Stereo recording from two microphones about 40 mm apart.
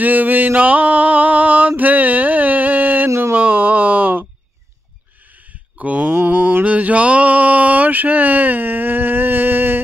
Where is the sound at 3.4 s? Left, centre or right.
Right.